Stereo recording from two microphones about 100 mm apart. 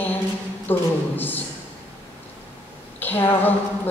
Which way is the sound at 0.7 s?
20° left (ahead or behind).